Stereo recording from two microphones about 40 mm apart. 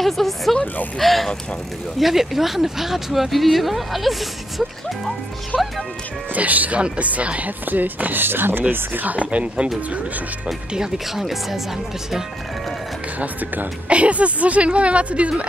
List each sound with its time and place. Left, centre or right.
0.0 s speech: centre
5.5 s speech: centre
6.3 s speech: right
7.6 s speech: right
9.0 s speech: right
10.4 s speech: right
11.1 s speech: centre
13.2 s speech: right
13.8 s speech: right